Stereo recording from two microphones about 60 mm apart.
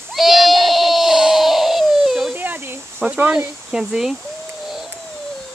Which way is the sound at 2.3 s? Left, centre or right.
Right.